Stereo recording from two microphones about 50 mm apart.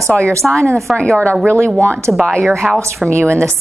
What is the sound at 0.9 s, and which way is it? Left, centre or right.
Speech, centre.